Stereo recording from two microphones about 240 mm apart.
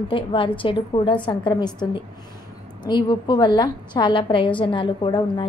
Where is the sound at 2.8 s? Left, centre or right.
Centre.